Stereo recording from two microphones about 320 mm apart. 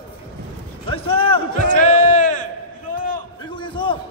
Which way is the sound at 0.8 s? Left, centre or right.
Centre.